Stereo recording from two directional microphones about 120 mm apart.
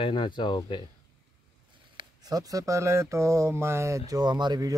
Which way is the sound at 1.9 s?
30° right (ahead or behind).